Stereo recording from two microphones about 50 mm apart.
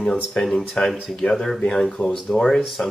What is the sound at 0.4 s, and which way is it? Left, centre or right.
Speech, centre.